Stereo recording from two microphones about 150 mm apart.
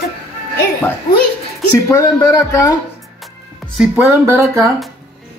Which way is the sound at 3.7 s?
10° right (ahead or behind).